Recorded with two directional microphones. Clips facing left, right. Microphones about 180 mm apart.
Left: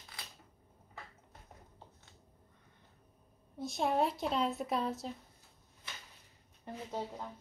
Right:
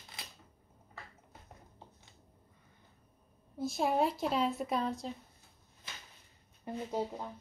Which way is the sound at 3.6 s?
Centre (ahead or behind).